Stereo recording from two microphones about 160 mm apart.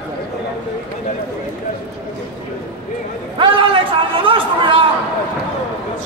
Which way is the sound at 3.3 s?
35° right (ahead or behind).